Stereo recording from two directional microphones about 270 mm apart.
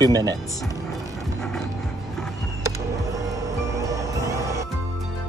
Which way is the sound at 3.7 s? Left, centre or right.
Centre.